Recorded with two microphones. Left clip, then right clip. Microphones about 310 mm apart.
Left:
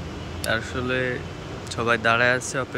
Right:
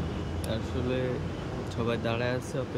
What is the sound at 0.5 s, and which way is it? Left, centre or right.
Speech, centre.